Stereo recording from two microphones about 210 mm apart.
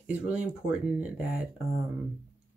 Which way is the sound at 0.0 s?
5° right (ahead or behind).